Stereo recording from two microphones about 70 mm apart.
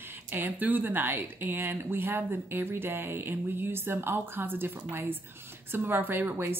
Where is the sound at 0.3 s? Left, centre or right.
Right.